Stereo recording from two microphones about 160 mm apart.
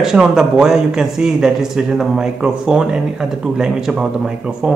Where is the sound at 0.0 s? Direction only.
5° right (ahead or behind).